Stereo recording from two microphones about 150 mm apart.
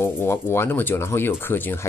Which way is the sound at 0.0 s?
15° left (ahead or behind).